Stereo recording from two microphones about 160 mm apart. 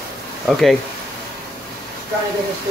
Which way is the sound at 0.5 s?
Centre (ahead or behind).